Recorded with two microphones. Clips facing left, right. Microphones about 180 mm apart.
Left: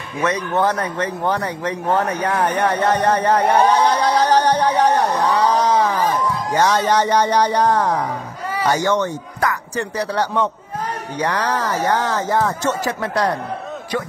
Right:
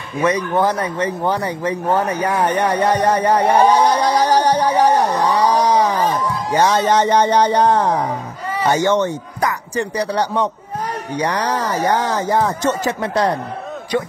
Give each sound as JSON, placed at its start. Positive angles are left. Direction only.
{"t": 0.5, "sound": "speech", "side_deg": -10}
{"t": 4.2, "sound": "a sound", "side_deg": -10}
{"t": 6.5, "sound": "speech", "side_deg": -20}